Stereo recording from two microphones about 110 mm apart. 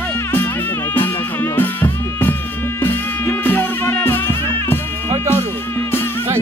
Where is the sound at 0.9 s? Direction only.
20° left (ahead or behind).